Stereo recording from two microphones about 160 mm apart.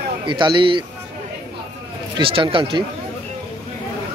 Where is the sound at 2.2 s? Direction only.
35° right (ahead or behind).